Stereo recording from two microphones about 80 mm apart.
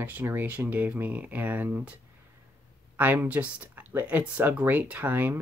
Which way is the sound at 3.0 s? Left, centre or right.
Right.